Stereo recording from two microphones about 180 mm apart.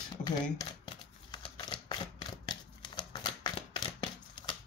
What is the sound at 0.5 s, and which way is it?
Shuffling cards, 25° left (ahead or behind).